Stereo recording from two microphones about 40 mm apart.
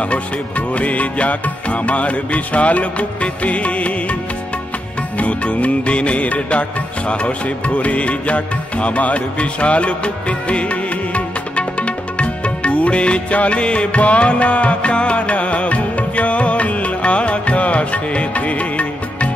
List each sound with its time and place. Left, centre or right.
0.0 s music: left